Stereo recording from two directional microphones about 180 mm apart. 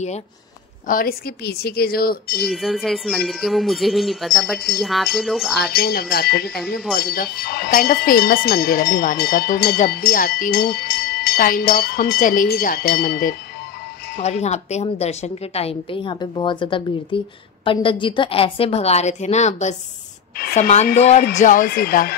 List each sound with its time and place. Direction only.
0.8 s speech: 55° left (ahead or behind)
2.4 s speech: centre (ahead or behind)
5.6 s speech: 60° left (ahead or behind)
14.2 s a woman's voice: 40° left (ahead or behind); by 22.1 s 55° left (ahead or behind)